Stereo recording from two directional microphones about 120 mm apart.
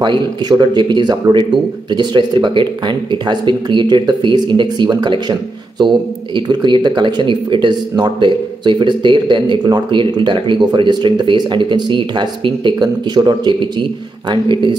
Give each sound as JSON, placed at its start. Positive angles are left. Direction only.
{"t": 0.0, "sound": "speech", "side_deg": -40}